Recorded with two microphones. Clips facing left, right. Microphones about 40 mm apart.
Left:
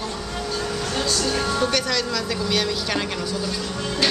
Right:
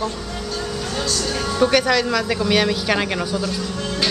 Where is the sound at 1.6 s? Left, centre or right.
Centre.